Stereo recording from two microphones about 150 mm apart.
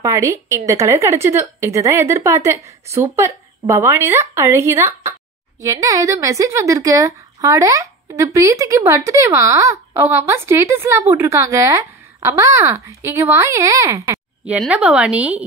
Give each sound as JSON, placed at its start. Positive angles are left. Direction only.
{"t": 0.0, "sound": "speech", "side_deg": -20}
{"t": 14.4, "sound": "a woman's voice", "side_deg": -10}